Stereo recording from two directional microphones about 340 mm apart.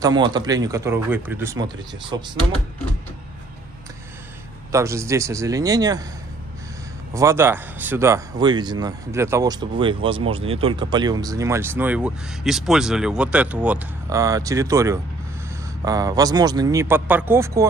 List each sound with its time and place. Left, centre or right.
0.0 s speech: centre
4.7 s speech: centre
7.2 s speech: centre